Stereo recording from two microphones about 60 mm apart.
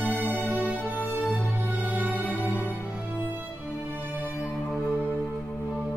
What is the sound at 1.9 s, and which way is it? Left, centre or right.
Music, right.